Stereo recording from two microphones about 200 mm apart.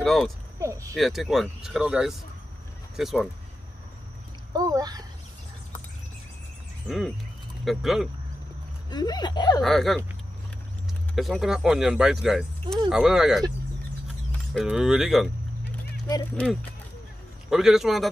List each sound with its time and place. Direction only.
0.0 s speech: centre (ahead or behind)
0.6 s speech: 15° right (ahead or behind)
0.9 s speech: centre (ahead or behind)
4.6 s a child's voice: 20° right (ahead or behind)
7.6 s speech: centre (ahead or behind)
8.9 s speech: 20° left (ahead or behind)
9.6 s speech: centre (ahead or behind)
11.1 s speech: centre (ahead or behind)
14.5 s speech: centre (ahead or behind)
17.5 s speech: centre (ahead or behind)